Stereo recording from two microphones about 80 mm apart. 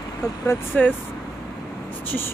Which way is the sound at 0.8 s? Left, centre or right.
Centre.